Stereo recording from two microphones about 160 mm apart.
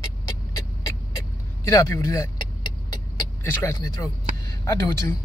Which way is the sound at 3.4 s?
15° left (ahead or behind).